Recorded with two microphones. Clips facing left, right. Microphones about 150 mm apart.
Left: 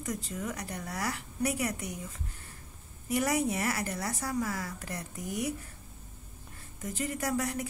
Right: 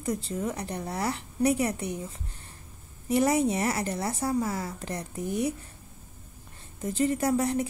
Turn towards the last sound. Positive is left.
turn(degrees=-30)  # may be behind; listen again after turning